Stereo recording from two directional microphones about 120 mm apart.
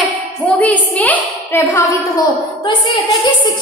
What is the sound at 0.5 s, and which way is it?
A woman's voice, 10° left (ahead or behind).